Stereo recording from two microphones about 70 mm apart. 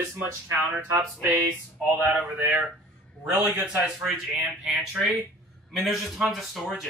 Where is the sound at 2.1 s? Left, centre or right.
Right.